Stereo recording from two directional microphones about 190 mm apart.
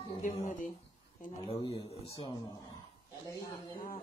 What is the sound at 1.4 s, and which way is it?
Speech, 30° left (ahead or behind).